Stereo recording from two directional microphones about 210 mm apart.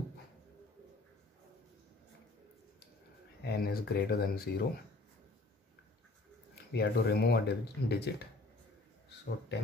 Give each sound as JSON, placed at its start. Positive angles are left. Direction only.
{"t": 3.4, "sound": "speech", "side_deg": 45}
{"t": 6.7, "sound": "speech", "side_deg": 50}